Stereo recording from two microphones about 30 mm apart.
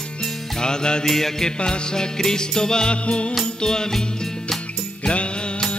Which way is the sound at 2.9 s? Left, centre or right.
Left.